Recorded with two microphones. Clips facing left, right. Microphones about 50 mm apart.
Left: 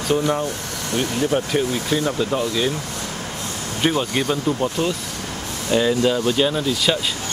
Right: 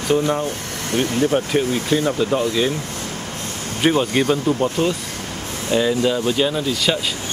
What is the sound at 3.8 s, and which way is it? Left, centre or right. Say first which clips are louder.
Speech: right 3 dB; centre.